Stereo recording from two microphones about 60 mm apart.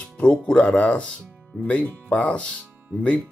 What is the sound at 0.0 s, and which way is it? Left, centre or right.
Speech, centre.